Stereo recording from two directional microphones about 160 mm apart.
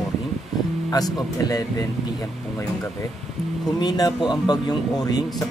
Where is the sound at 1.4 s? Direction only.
20° left (ahead or behind).